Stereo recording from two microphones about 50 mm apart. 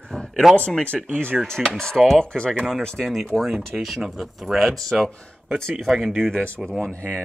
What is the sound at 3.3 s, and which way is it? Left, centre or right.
Speech, centre.